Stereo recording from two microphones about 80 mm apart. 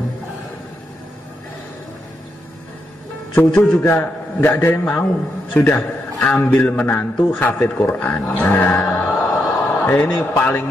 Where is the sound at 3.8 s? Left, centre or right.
Left.